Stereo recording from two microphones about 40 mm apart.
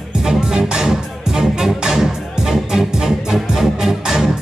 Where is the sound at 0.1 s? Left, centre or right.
Centre.